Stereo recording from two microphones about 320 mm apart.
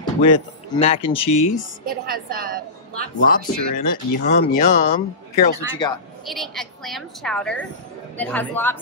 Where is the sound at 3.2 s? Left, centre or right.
Left.